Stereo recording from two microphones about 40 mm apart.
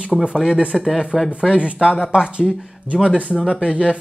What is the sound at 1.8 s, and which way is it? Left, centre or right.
Speech, centre.